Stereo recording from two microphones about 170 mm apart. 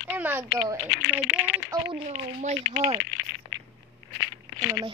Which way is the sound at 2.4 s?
40° right (ahead or behind).